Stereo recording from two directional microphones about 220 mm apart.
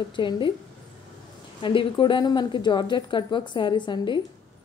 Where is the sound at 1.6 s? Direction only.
20° left (ahead or behind).